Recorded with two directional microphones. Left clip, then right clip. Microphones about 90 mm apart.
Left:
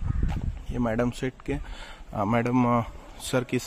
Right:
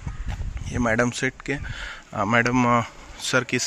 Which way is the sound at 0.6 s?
10° right (ahead or behind).